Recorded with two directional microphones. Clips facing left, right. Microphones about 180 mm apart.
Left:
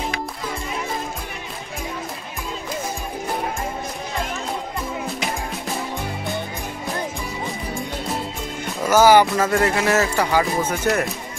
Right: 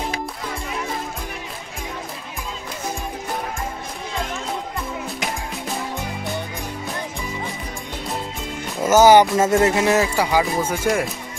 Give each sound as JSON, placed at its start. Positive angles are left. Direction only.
{"t": 8.8, "sound": "speech", "side_deg": -20}